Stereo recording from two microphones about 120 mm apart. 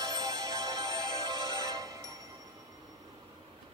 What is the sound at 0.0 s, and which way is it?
Music, 30° right (ahead or behind).